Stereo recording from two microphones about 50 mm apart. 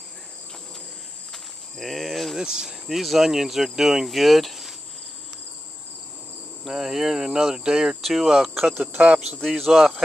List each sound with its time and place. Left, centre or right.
1.3 s cricket: centre
2.3 s speech: centre
6.6 s speech: centre
9.0 s speech: right
9.6 s speech: centre